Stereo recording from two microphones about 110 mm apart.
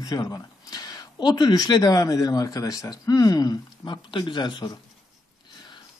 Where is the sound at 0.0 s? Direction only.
35° left (ahead or behind).